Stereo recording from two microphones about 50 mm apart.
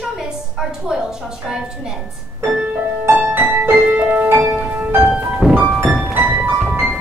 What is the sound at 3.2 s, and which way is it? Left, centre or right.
Music, right.